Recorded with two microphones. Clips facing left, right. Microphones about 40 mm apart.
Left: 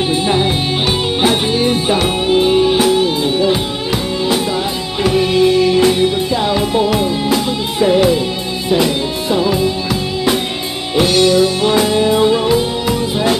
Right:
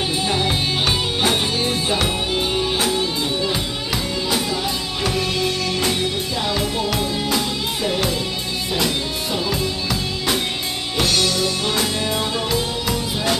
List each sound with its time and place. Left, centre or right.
0.1 s music: centre
5.0 s music: centre
11.0 s music: centre